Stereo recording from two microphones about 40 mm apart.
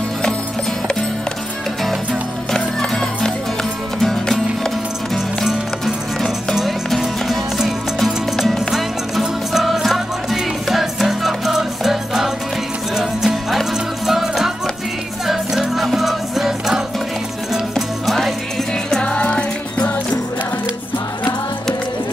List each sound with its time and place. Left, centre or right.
2.5 s music: centre
7.2 s music: centre
17.5 s music: centre
19.0 s music: left